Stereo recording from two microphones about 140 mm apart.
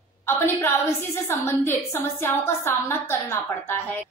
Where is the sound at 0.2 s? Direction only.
15° left (ahead or behind).